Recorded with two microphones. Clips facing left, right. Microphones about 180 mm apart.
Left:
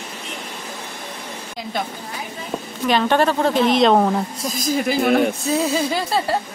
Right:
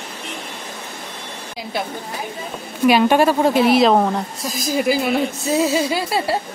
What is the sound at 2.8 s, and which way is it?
A woman's voice, 10° right (ahead or behind).